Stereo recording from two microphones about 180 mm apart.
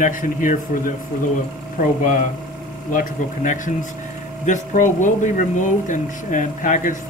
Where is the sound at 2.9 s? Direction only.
45° left (ahead or behind).